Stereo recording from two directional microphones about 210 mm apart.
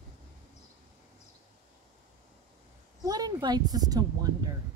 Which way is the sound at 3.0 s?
20° right (ahead or behind).